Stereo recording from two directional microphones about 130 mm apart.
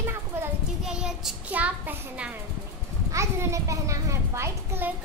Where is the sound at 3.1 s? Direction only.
25° right (ahead or behind).